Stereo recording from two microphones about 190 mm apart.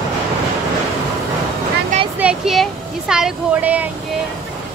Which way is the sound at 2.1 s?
5° right (ahead or behind).